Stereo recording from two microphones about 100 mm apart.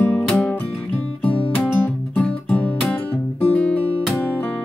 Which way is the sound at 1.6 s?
20° left (ahead or behind).